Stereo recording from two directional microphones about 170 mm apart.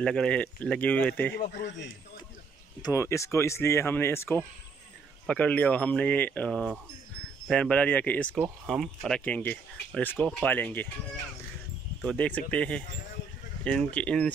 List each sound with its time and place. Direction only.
0.0 s speech: 5° left (ahead or behind)
2.8 s speech: 15° left (ahead or behind)
12.0 s speech: 5° left (ahead or behind)